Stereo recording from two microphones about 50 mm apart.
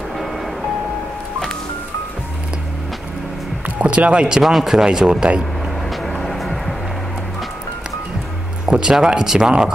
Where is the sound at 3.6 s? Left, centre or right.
Right.